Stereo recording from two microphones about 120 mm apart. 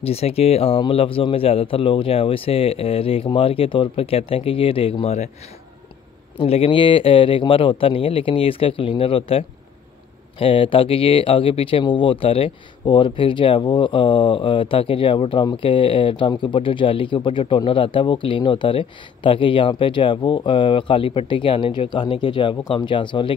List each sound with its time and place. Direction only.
0.0 s speech: 55° left (ahead or behind)
6.4 s speech: 55° left (ahead or behind)
10.4 s speech: 45° left (ahead or behind)